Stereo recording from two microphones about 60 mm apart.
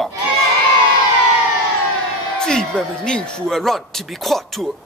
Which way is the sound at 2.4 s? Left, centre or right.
Centre.